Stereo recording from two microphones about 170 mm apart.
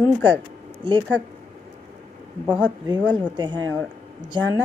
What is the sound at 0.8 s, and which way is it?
Speech, 30° right (ahead or behind).